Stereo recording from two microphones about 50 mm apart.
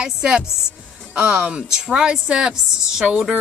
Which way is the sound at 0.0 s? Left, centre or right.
Centre.